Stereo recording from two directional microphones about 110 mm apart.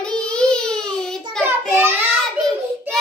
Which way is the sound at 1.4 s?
20° right (ahead or behind).